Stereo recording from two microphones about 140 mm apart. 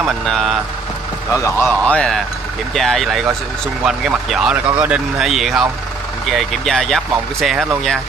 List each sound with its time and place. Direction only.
0.3 s speech: centre (ahead or behind)
1.3 s a man's voice: 20° left (ahead or behind)
1.7 s speech: 5° left (ahead or behind)